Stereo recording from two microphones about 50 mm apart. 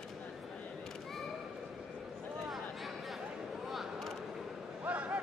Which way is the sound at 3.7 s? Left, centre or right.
Centre.